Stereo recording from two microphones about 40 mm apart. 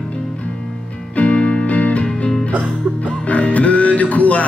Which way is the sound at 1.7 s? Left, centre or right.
Left.